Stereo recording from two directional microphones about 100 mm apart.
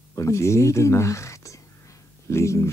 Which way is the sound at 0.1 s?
30° left (ahead or behind).